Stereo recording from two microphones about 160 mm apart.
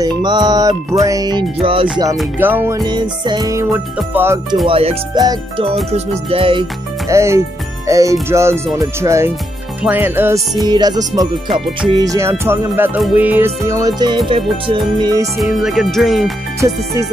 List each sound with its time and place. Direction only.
0.0 s music: 25° right (ahead or behind)
1.6 s music: 35° right (ahead or behind)
2.3 s music: 10° right (ahead or behind)
2.8 s music: 25° right (ahead or behind)
4.6 s music: 35° right (ahead or behind)
7.1 s speech: 20° right (ahead or behind)
9.0 s music: 20° right (ahead or behind)
15.3 s speech: centre (ahead or behind)